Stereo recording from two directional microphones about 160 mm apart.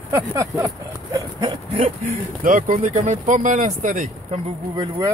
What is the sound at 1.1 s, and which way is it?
Dog, 25° right (ahead or behind).